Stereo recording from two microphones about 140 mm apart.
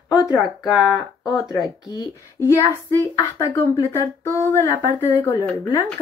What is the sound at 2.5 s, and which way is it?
Speech, 20° left (ahead or behind).